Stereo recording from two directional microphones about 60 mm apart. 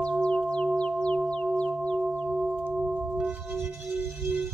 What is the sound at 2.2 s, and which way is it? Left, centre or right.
Chirp tone, centre.